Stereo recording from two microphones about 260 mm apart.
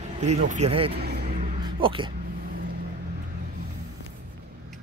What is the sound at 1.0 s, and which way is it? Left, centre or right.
Vehicle, right.